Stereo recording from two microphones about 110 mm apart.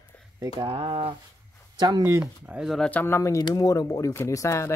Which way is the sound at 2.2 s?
15° right (ahead or behind).